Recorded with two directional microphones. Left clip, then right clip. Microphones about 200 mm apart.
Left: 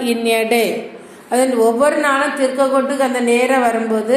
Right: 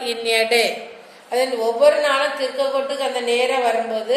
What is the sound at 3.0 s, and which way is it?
Speech, 45° left (ahead or behind).